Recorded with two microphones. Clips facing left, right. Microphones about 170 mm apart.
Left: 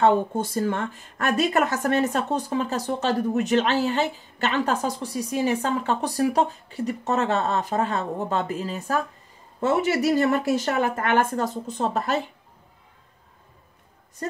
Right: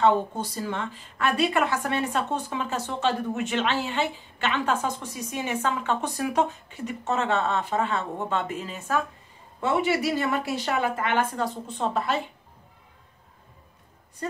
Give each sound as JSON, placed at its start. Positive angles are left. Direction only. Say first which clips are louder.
{"t": 0.0, "sound": "a woman's voice", "louder": "left 2 dB", "side_deg": 50}